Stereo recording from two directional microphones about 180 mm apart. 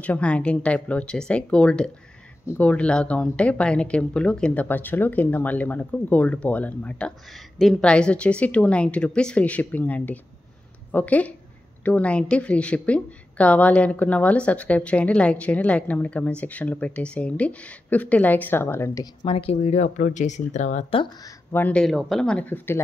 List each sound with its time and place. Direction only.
0.0 s speech: 5° left (ahead or behind)
19.2 s speech: 30° left (ahead or behind)
21.0 s speech: 20° left (ahead or behind)